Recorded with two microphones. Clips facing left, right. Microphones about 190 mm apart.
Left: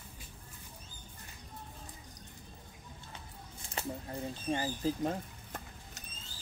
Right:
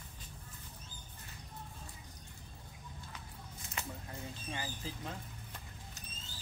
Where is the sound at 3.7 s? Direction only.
35° left (ahead or behind).